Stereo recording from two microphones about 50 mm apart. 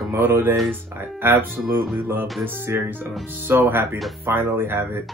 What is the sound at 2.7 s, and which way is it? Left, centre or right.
Speech, right.